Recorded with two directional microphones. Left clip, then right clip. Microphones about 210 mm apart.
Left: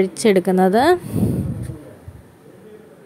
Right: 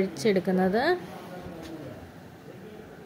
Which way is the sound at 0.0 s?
35° left (ahead or behind).